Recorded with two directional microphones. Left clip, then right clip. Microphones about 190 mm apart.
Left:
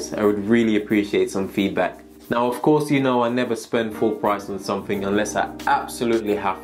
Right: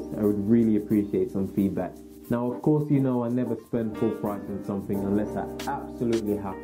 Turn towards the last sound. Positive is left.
turn(degrees=15)  # may be behind; listen again after turning